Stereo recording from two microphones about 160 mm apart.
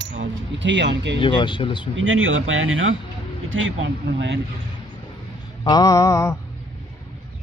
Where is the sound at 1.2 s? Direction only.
30° left (ahead or behind).